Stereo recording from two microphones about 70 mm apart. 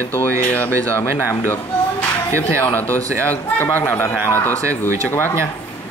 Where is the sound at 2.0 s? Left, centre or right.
Left.